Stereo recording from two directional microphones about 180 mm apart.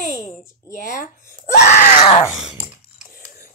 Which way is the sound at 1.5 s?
40° left (ahead or behind).